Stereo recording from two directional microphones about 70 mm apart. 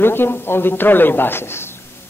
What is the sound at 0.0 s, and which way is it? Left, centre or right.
A woman's voice, left.